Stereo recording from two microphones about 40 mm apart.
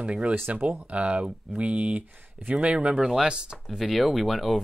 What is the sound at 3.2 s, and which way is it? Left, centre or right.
Speech, right.